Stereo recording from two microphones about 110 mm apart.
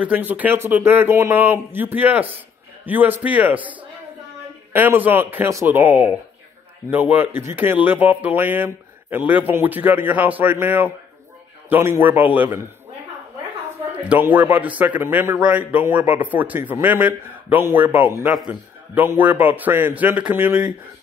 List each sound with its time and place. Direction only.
0.0 s a man's voice: 15° right (ahead or behind)
14.0 s a man's voice: 15° right (ahead or behind)